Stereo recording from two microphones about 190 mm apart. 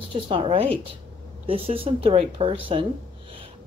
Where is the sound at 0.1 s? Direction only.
30° right (ahead or behind).